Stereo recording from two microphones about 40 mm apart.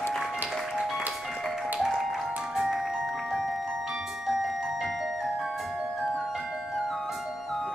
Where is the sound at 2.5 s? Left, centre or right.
Centre.